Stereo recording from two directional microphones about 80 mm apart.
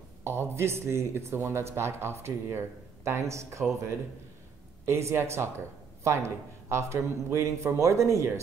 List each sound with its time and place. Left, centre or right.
0.2 s speech: right
4.8 s speech: right